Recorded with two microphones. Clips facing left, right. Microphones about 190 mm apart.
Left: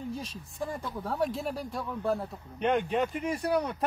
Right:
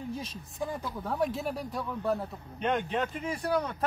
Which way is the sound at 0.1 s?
Centre (ahead or behind).